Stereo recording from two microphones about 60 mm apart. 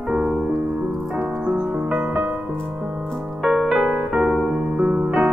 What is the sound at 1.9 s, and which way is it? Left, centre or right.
Music, right.